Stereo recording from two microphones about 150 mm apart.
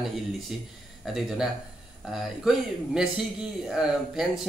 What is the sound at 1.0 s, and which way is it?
Speech, centre (ahead or behind).